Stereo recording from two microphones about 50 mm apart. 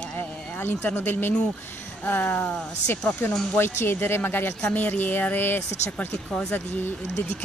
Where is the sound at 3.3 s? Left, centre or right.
Centre.